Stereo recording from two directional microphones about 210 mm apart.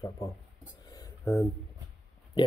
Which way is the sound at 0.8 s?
15° left (ahead or behind).